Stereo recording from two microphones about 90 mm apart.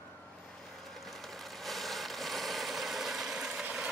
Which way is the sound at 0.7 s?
Centre (ahead or behind).